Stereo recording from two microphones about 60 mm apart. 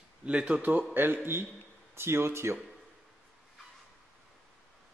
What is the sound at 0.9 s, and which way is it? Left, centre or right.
A man's voice, right.